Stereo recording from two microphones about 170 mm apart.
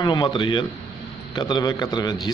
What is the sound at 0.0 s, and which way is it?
A man's voice, 25° left (ahead or behind).